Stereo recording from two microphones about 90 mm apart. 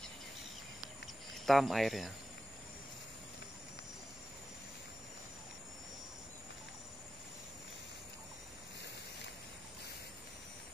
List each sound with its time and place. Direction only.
1.0 s cricket: centre (ahead or behind)